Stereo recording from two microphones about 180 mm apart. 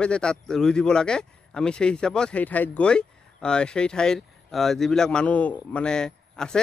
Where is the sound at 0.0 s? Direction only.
5° left (ahead or behind).